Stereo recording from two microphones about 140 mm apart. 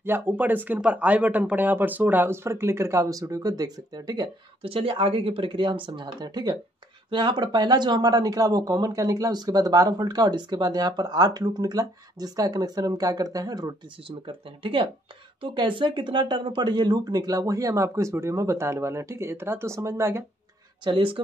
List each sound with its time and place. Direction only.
0.0 s speech: 15° right (ahead or behind); by 4.3 s 30° right (ahead or behind)
4.6 s speech: 40° right (ahead or behind)
14.0 s speech: 35° right (ahead or behind); by 20.2 s 20° right (ahead or behind)
20.8 s speech: 35° right (ahead or behind)